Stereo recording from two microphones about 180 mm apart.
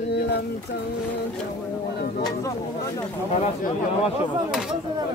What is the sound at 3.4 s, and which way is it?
Speech, 35° left (ahead or behind).